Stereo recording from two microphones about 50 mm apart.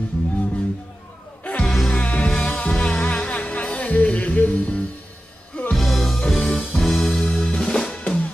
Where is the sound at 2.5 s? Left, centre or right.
Left.